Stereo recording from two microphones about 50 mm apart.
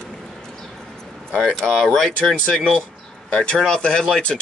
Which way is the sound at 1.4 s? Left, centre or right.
Centre.